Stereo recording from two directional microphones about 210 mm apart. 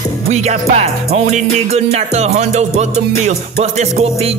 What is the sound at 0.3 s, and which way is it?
Music, 30° right (ahead or behind).